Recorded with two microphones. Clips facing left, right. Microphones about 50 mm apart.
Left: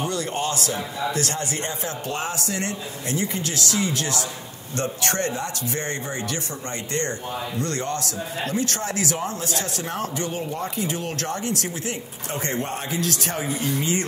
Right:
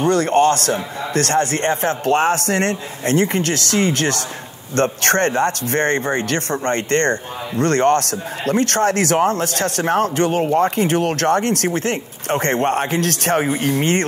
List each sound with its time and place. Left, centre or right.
0.0 s speech: right